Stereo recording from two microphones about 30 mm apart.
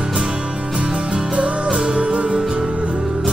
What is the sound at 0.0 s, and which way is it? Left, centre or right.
Music, right.